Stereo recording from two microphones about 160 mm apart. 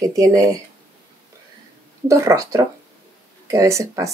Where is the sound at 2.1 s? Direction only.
20° right (ahead or behind).